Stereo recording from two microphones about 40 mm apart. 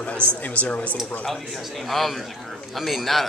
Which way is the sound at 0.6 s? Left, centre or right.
Left.